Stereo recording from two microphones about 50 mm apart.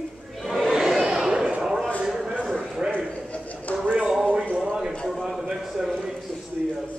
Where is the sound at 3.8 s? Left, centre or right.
Right.